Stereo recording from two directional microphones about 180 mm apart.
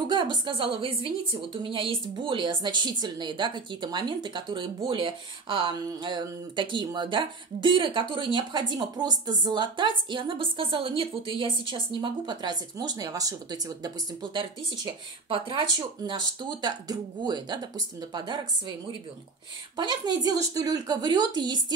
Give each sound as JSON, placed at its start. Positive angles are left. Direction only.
{"t": 0.1, "sound": "a woman's voice", "side_deg": -25}
{"t": 19.8, "sound": "a woman's voice", "side_deg": -25}